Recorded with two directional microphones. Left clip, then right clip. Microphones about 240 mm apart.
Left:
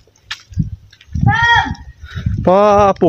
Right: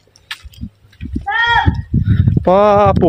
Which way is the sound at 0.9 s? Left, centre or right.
Centre.